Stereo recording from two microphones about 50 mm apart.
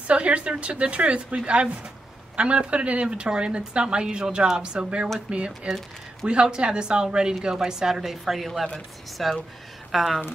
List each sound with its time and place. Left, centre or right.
0.1 s a woman's voice: right; by 10.2 s centre